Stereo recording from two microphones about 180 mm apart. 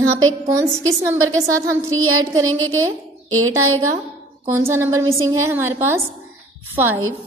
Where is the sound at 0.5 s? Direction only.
15° right (ahead or behind).